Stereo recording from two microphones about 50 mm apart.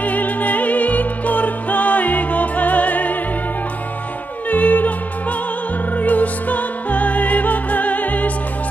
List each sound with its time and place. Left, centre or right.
0.0 s music: left
4.5 s music: left
5.9 s music: left